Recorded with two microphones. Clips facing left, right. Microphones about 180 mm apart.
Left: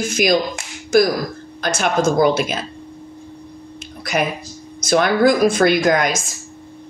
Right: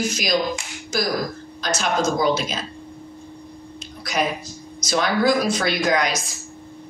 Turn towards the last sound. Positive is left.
turn(degrees=50)  # may be behind; listen again after turning